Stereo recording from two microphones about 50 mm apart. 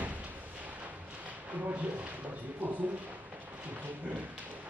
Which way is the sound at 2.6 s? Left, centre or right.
Right.